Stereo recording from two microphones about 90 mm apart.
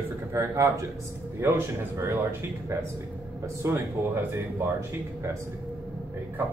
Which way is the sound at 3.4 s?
25° right (ahead or behind).